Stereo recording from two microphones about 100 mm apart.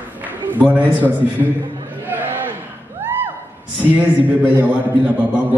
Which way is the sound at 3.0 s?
20° right (ahead or behind).